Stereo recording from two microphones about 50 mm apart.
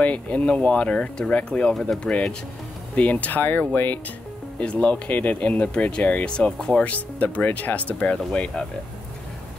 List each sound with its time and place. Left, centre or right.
0.0 s speech: left
1.7 s speech: centre
3.0 s speech: left
4.6 s speech: left
6.8 s speech: left